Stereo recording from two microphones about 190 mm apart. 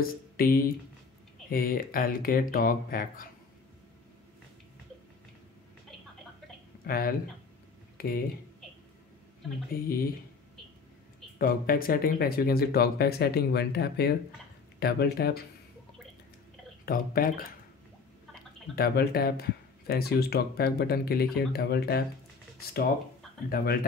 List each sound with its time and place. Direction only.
0.0 s speech: 50° left (ahead or behind)
6.9 s speech: 50° left (ahead or behind)
9.7 s speech: 50° left (ahead or behind)
11.3 s speech: 50° left (ahead or behind)
16.8 s speech: 50° left (ahead or behind)
18.8 s speech: 55° left (ahead or behind)
23.5 s speech: 50° left (ahead or behind)